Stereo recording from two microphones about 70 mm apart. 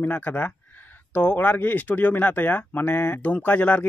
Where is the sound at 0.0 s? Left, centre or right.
Left.